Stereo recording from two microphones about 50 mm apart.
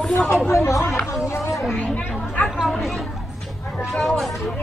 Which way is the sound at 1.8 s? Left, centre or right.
Left.